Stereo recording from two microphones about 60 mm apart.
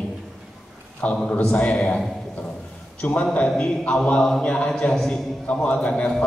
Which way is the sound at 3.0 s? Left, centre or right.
Left.